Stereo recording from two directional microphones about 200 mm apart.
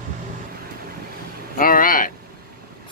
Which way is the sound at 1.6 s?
45° left (ahead or behind).